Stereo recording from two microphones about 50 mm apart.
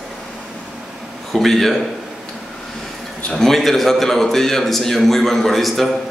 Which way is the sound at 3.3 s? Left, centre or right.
Centre.